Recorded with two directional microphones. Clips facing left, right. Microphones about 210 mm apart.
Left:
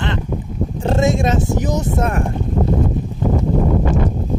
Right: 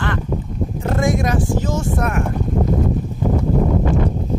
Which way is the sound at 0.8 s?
25° left (ahead or behind).